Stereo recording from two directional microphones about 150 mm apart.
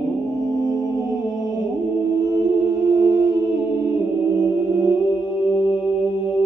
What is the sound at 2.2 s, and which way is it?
Music, 25° right (ahead or behind).